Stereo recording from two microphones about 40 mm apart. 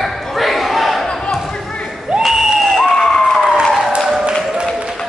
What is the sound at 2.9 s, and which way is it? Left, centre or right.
Police car, centre.